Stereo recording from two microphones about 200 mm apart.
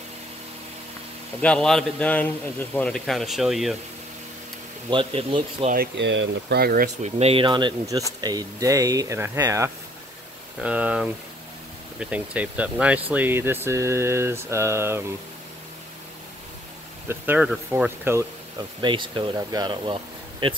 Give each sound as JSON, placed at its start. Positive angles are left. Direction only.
{"t": 1.4, "sound": "a man's voice", "side_deg": 5}
{"t": 4.8, "sound": "speech", "side_deg": -25}
{"t": 5.7, "sound": "speech", "side_deg": -55}
{"t": 7.2, "sound": "speech", "side_deg": -30}
{"t": 8.2, "sound": "mantra", "side_deg": -20}
{"t": 10.6, "sound": "a man's voice", "side_deg": -5}
{"t": 12.0, "sound": "mantra", "side_deg": -5}
{"t": 17.1, "sound": "mantra", "side_deg": -10}
{"t": 18.8, "sound": "speech", "side_deg": -25}